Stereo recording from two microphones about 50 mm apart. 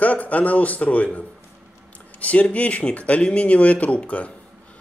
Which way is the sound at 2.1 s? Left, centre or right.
Left.